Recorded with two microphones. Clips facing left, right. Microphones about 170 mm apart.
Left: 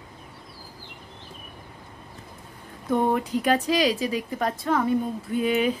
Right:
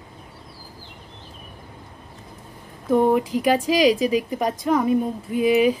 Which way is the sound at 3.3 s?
10° right (ahead or behind).